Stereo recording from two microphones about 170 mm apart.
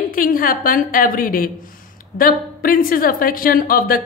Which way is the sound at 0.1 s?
55° left (ahead or behind).